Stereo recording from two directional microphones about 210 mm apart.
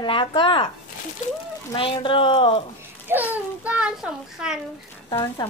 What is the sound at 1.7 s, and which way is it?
Speech, 25° left (ahead or behind).